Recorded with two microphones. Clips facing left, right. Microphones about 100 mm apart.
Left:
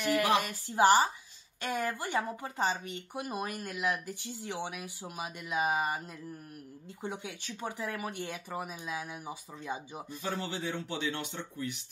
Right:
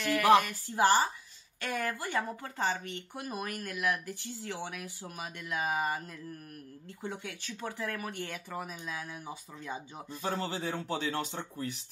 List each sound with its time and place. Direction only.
0.0 s a woman's voice: 20° left (ahead or behind)
10.2 s speech: 30° right (ahead or behind)